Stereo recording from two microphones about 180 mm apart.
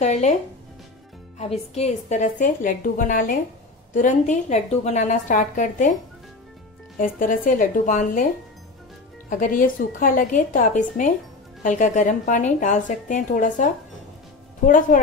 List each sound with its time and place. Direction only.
0.0 s speech: 40° left (ahead or behind)
1.4 s a woman's voice: 35° left (ahead or behind)
7.0 s a woman's voice: 45° left (ahead or behind)
9.3 s a woman's voice: 50° left (ahead or behind)